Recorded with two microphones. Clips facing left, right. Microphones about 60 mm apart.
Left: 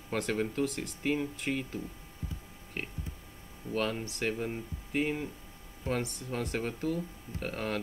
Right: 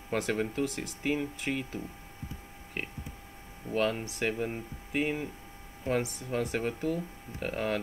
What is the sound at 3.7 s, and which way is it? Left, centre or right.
Speech, centre.